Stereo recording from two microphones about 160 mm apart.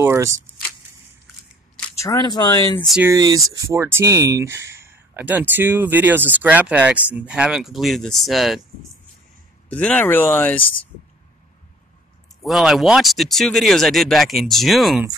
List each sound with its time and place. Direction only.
0.0 s speech: 15° right (ahead or behind)
2.0 s speech: 25° left (ahead or behind)
3.2 s speech: 20° right (ahead or behind); by 8.5 s centre (ahead or behind)
9.7 s speech: 10° left (ahead or behind)
12.4 s speech: centre (ahead or behind)